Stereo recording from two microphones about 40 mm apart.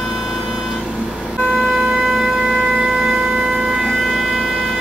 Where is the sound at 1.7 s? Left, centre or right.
Centre.